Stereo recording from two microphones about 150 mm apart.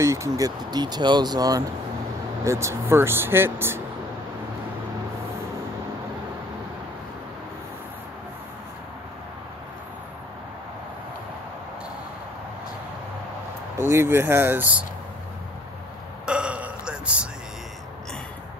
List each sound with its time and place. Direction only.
0.0 s speech: 20° right (ahead or behind)
13.7 s speech: 20° right (ahead or behind)
16.3 s burping: 5° right (ahead or behind)